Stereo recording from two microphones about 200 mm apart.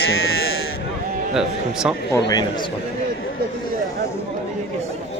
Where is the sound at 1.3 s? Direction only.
5° right (ahead or behind).